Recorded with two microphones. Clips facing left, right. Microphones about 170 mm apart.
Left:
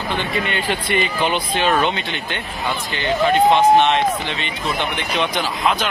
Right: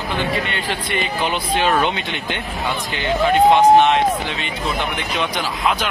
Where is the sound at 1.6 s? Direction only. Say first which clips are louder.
Even; 10° right (ahead or behind).